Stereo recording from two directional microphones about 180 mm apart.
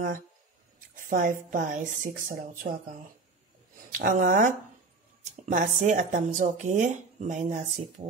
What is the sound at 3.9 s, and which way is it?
Speech, 45° right (ahead or behind).